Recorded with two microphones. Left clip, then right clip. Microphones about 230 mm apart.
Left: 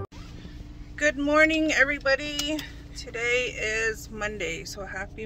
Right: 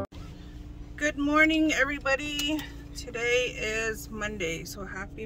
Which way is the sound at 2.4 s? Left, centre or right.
Centre.